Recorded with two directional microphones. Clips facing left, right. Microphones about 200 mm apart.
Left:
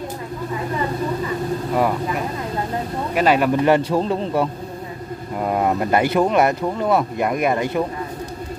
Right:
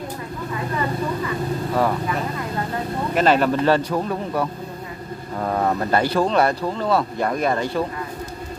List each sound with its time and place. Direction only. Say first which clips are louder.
1.8 s a man's voice: left 1 dB; 10° left (ahead or behind)
5.4 s speech: left 2 dB; 15° left (ahead or behind)